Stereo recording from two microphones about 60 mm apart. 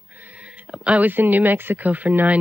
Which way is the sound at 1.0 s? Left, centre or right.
Right.